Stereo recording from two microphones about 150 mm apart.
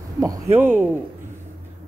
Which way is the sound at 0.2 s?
20° right (ahead or behind).